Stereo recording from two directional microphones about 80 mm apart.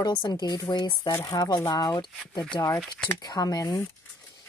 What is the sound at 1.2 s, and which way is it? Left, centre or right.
A woman's voice, left.